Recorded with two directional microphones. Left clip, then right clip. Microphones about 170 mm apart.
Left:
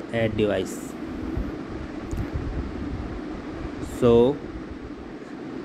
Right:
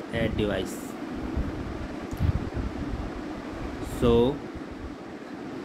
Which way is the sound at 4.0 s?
20° left (ahead or behind).